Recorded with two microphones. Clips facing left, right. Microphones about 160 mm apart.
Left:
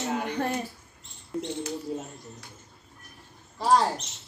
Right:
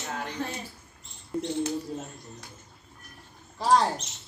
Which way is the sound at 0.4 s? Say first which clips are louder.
Left 4 dB; 55° left (ahead or behind).